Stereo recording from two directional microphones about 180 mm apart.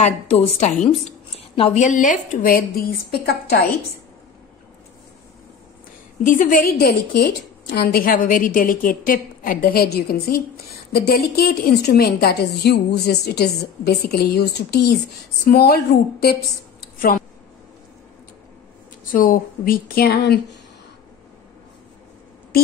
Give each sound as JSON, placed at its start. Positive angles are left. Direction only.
{"t": 0.0, "sound": "a woman's voice", "side_deg": 40}
{"t": 6.2, "sound": "a woman's voice", "side_deg": 45}
{"t": 6.9, "sound": "a woman's voice", "side_deg": 60}
{"t": 16.8, "sound": "a sound", "side_deg": 50}
{"t": 19.1, "sound": "a woman's voice", "side_deg": 50}